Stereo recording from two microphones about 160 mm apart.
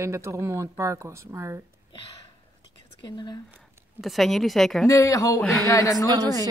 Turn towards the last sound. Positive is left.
turn(degrees=-25)  # may be behind; listen again after turning